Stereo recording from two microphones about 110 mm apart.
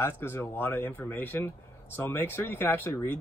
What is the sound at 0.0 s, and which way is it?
Speech, 20° left (ahead or behind).